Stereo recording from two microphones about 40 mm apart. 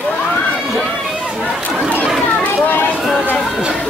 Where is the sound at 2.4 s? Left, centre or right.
Left.